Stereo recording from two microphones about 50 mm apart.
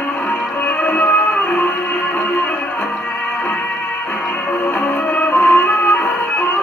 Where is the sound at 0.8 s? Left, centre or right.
Left.